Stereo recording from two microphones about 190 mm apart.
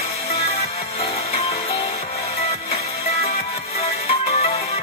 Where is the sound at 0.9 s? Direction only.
30° left (ahead or behind).